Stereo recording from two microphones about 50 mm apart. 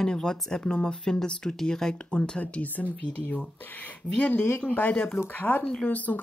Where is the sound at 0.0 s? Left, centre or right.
Centre.